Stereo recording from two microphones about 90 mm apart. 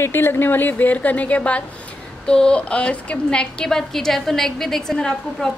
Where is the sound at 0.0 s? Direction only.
25° left (ahead or behind).